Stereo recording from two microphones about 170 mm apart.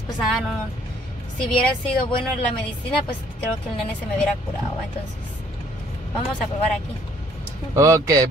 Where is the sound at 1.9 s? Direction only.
30° left (ahead or behind).